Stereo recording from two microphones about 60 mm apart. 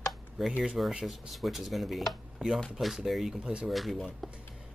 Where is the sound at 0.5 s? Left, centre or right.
Centre.